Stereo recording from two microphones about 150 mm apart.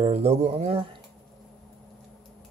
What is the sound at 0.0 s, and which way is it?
Speech, 45° right (ahead or behind).